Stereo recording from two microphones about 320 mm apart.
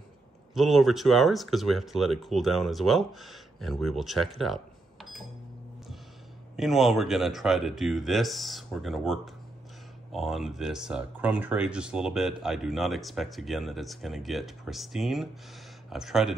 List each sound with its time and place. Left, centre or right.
0.6 s speech: centre
6.5 s speech: centre